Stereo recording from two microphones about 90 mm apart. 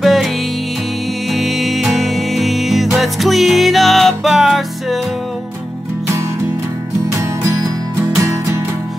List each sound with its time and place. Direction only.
0.0 s music: centre (ahead or behind)
1.3 s music: centre (ahead or behind)
8.2 s music: 35° right (ahead or behind)